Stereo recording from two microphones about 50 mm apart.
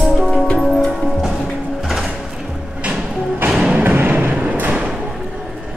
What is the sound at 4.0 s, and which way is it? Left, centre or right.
Thump, right.